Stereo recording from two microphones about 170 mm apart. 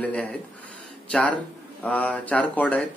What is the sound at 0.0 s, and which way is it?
Speech, 5° left (ahead or behind).